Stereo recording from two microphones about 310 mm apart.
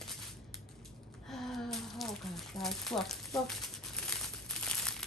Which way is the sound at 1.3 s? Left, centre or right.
Centre.